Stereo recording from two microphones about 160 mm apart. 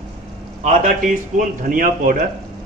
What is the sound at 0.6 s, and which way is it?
A man's voice, 50° right (ahead or behind).